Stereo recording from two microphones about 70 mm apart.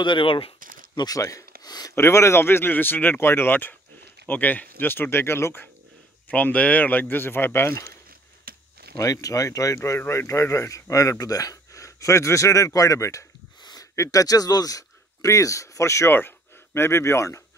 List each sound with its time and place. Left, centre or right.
0.9 s speech: left
2.0 s speech: left
6.2 s speech: left
8.9 s speech: left
13.6 s a sound: left
13.9 s speech: left
14.2 s speech: left
16.2 s speech: left